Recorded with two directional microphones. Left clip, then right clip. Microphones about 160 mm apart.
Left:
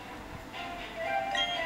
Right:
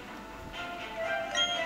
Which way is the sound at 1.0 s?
35° right (ahead or behind).